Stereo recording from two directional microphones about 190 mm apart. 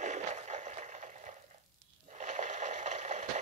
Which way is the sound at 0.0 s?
40° right (ahead or behind).